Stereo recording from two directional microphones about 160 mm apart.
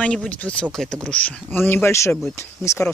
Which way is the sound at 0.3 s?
10° left (ahead or behind).